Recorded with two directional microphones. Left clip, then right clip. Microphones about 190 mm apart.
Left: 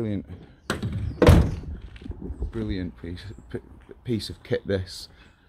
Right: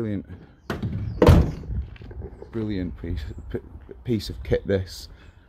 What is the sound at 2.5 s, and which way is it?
Speech, 15° right (ahead or behind).